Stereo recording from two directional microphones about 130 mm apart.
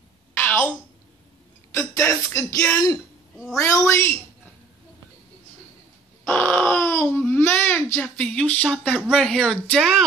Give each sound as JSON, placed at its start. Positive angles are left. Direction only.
{"t": 0.4, "sound": "a sound", "side_deg": 15}
{"t": 1.8, "sound": "music", "side_deg": 20}
{"t": 6.2, "sound": "crying", "side_deg": 15}
{"t": 9.1, "sound": "speech", "side_deg": 5}